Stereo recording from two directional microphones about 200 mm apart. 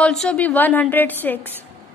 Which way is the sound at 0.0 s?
5° left (ahead or behind).